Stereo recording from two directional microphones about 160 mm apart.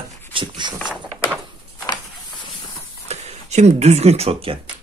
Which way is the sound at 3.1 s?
45° right (ahead or behind).